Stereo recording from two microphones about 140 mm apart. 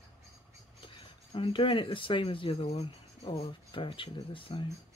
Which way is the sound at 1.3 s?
40° left (ahead or behind).